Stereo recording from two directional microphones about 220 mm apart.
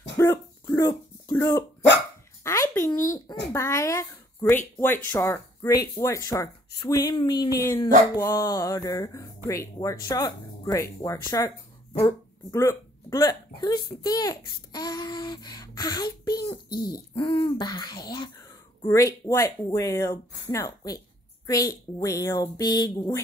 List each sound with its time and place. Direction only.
0.2 s dog: 15° left (ahead or behind)
2.4 s a child's voice: 15° left (ahead or behind)
16.4 s a sound: 20° left (ahead or behind)
18.9 s a child's voice: 15° left (ahead or behind)